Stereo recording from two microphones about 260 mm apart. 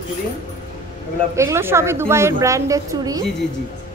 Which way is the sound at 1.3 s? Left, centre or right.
Centre.